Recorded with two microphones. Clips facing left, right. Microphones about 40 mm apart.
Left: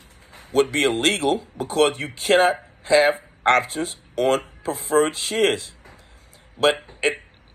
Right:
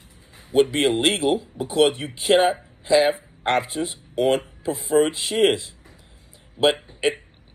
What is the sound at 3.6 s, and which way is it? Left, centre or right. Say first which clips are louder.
Speech: left 1 dB; left.